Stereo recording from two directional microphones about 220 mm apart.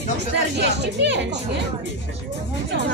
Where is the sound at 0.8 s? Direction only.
50° right (ahead or behind).